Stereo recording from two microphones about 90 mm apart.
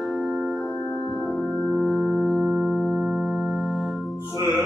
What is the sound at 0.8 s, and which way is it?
Music, 30° left (ahead or behind).